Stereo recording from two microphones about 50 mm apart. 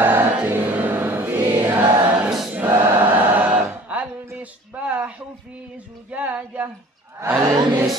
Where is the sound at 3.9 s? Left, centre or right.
Right.